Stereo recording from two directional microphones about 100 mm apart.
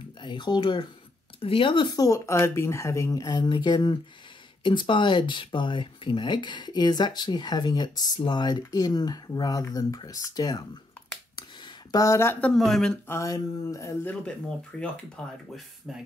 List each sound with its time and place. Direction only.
0.2 s speech: 50° left (ahead or behind)
1.4 s speech: 65° left (ahead or behind)
2.0 s speech: 35° left (ahead or behind)
11.9 s speech: 35° left (ahead or behind)
12.4 s speech: 5° left (ahead or behind)
13.1 s speech: 35° left (ahead or behind)
14.8 s speech: 10° left (ahead or behind)